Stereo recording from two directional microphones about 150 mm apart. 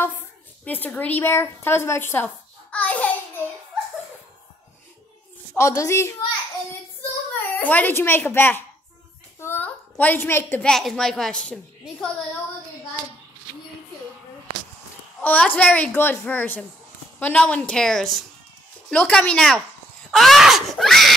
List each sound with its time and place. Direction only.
0.7 s a woman's voice: 10° left (ahead or behind)
5.6 s a woman's voice: 20° left (ahead or behind)
10.7 s a woman's voice: centre (ahead or behind)
15.2 s a woman's voice: 10° left (ahead or behind)